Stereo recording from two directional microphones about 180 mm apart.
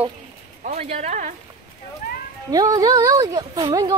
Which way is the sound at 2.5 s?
20° right (ahead or behind).